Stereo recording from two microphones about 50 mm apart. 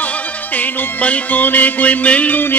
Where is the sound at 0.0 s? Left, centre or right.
Left.